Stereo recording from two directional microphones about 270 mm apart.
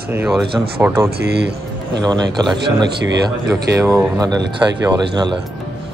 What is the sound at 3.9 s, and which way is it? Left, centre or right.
A man's voice, centre.